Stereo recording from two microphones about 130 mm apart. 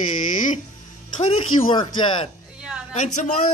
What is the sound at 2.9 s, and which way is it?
Speech, 65° left (ahead or behind).